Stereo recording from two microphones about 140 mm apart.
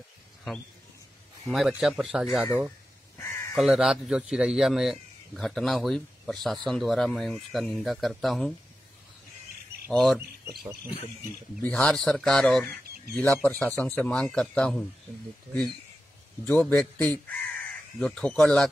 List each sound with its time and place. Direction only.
1.7 s a man's voice: 5° right (ahead or behind)
3.2 s crow: 25° left (ahead or behind)
3.5 s a man's voice: centre (ahead or behind)
9.8 s a man's voice: centre (ahead or behind)
16.4 s speech: 10° left (ahead or behind)